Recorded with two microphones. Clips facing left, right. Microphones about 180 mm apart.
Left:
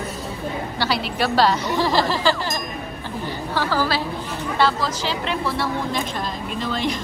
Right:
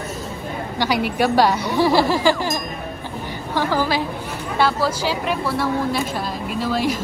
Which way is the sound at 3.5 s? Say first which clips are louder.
Right 2 dB; 15° right (ahead or behind).